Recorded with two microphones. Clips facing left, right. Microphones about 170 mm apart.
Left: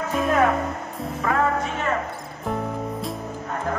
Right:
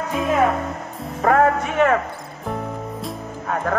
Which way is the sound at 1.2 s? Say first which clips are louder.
Right 6 dB; 60° right (ahead or behind).